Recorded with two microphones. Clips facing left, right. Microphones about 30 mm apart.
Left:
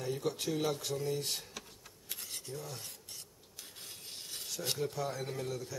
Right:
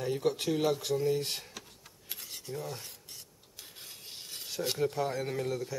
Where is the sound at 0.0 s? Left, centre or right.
Right.